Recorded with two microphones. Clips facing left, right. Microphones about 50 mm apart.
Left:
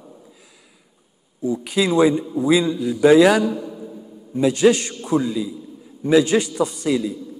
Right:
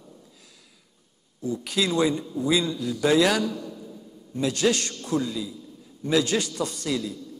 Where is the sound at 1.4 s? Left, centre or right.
Centre.